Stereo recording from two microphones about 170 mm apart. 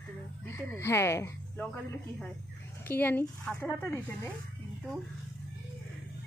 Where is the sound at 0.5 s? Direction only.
15° left (ahead or behind).